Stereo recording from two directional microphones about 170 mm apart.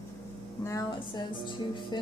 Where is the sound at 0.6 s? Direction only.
20° left (ahead or behind).